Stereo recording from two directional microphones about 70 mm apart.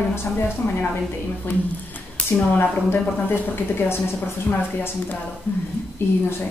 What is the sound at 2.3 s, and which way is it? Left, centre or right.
A woman's voice, left.